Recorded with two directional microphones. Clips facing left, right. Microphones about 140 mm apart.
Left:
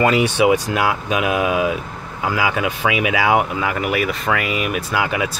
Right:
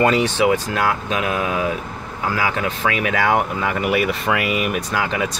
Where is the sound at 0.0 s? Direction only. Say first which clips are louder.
Left 1 dB; 5° left (ahead or behind).